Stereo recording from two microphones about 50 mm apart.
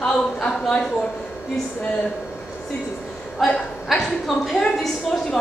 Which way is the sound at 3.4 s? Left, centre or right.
Centre.